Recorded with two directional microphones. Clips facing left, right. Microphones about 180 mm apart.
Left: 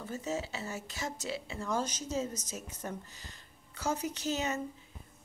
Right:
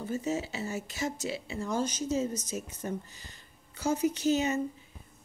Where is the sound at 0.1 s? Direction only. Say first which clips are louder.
Right 4 dB; 10° right (ahead or behind).